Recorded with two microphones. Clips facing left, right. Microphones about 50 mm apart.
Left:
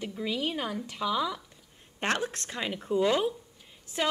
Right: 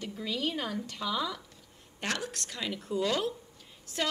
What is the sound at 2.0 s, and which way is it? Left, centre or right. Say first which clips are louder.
A woman's voice: left 5 dB; left.